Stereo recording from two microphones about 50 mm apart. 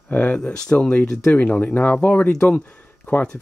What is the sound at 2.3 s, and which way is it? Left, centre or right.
Speech, centre.